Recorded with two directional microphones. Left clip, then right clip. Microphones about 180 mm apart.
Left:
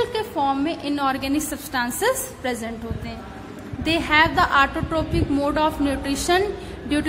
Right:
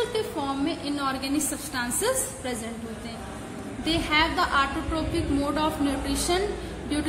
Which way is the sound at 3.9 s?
35° left (ahead or behind).